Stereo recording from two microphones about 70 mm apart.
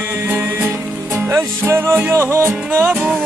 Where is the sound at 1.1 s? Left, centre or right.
Right.